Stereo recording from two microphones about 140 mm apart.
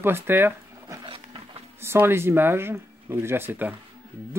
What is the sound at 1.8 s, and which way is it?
Speech, 15° right (ahead or behind).